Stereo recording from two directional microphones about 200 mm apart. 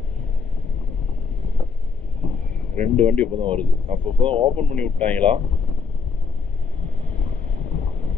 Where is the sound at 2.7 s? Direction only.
35° right (ahead or behind).